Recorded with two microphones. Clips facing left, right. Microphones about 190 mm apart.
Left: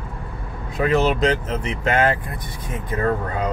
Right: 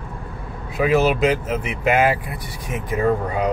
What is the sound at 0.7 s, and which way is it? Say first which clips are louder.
Speech: right 1 dB; 5° right (ahead or behind).